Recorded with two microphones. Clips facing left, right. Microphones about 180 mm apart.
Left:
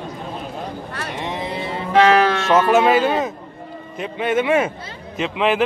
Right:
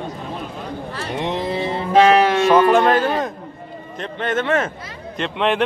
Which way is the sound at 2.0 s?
25° right (ahead or behind).